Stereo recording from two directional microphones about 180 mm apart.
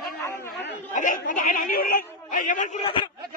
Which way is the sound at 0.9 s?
45° left (ahead or behind).